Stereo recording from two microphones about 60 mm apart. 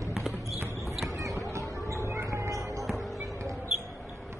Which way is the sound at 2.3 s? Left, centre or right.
Right.